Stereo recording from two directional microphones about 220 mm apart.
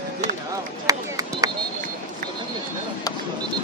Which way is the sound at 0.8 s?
15° right (ahead or behind).